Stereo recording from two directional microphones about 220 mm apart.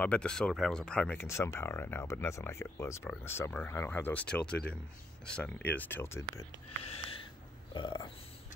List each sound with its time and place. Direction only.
0.0 s speech: 5° left (ahead or behind)
7.7 s burping: 20° left (ahead or behind)